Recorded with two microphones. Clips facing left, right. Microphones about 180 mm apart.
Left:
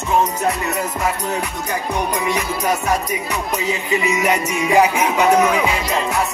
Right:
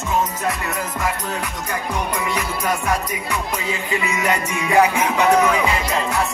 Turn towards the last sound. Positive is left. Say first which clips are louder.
# left 2 dB
turn(degrees=20)  # may be behind; listen again after turning